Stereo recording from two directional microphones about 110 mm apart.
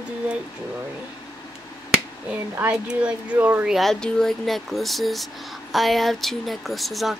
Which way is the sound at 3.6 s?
Centre (ahead or behind).